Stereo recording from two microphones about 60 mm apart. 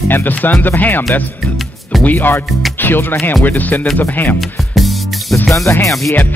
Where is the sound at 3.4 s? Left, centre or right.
Left.